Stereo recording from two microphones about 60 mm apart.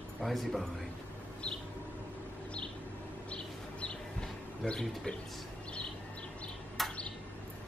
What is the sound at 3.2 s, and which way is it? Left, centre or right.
Bird, centre.